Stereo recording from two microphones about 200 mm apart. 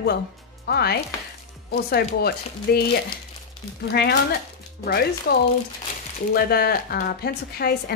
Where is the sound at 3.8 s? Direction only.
55° left (ahead or behind).